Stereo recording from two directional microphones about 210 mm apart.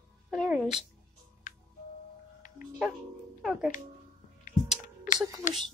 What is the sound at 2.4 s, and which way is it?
Music, 40° left (ahead or behind).